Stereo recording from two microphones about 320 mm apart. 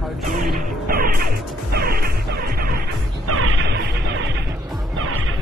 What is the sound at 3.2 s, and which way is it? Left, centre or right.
Music, right.